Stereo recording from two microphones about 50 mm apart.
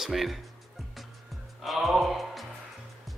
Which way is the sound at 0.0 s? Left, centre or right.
Centre.